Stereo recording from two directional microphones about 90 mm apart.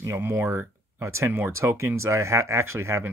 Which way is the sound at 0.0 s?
30° right (ahead or behind).